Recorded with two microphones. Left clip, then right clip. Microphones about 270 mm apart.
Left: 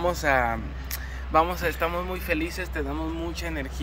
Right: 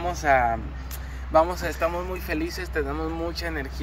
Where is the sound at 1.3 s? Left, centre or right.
Centre.